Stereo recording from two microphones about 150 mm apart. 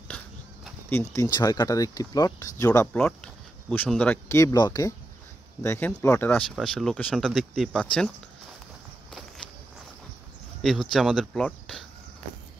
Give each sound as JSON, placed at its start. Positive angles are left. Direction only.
{"t": 0.8, "sound": "speech", "side_deg": 20}
{"t": 2.9, "sound": "speech", "side_deg": 10}
{"t": 6.5, "sound": "speech", "side_deg": 5}
{"t": 10.6, "sound": "speech", "side_deg": 0}